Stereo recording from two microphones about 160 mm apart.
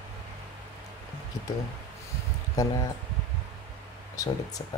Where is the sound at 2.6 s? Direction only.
20° left (ahead or behind).